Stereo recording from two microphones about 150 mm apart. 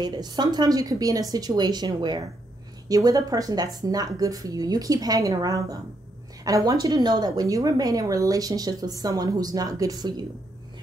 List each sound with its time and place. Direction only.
0.0 s a woman's voice: 25° right (ahead or behind)